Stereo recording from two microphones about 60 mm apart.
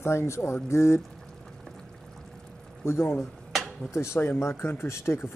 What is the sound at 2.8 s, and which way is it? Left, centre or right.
Speech, left.